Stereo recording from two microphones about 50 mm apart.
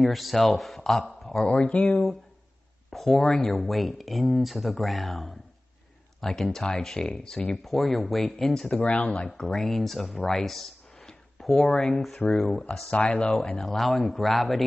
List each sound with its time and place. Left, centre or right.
0.0 s speech: centre
1.2 s a sound: centre
1.5 s speech: left
1.9 s speech: centre
7.6 s speech: centre
8.8 s speech: left
9.4 s speech: centre
12.9 s speech: left
13.2 s speech: centre